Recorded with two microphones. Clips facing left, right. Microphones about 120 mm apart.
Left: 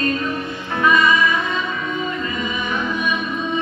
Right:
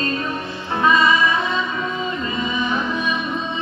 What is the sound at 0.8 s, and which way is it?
Music, 30° right (ahead or behind).